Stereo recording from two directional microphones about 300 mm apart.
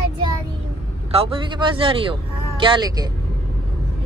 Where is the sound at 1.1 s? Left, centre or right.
Centre.